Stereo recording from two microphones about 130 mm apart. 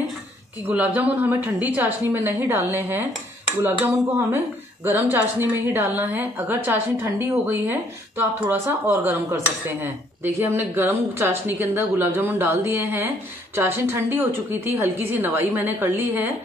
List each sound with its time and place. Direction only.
0.7 s speech: 10° right (ahead or behind)